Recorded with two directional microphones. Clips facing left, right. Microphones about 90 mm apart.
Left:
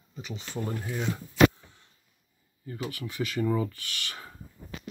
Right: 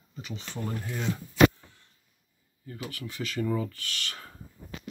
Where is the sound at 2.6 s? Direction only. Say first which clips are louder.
Left 3 dB; 15° left (ahead or behind).